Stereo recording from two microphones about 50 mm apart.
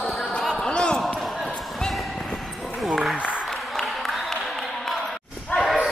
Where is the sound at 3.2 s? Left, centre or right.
Right.